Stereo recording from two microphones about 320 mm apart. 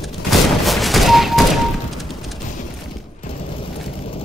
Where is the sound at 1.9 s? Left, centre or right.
Centre.